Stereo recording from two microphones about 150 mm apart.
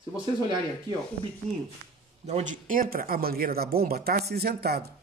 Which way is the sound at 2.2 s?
50° right (ahead or behind).